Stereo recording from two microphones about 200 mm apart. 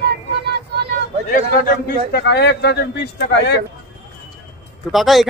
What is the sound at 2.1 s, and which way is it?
Speech, 55° left (ahead or behind).